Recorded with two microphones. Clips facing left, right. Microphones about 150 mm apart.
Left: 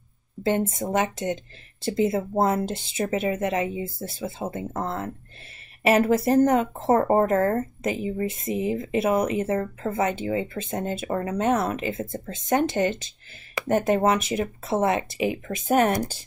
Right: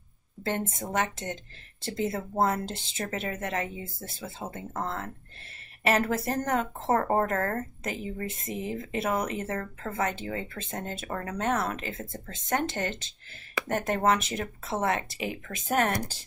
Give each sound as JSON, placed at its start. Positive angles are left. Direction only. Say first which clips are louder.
{"t": 0.4, "sound": "speech", "louder": "left 7 dB", "side_deg": 15}